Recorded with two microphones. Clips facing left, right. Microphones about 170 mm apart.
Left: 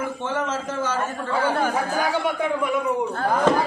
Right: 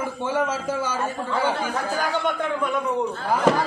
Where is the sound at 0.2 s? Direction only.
10° right (ahead or behind).